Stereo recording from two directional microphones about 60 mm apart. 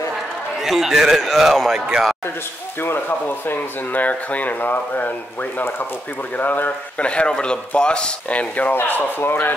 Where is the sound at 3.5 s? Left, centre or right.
Left.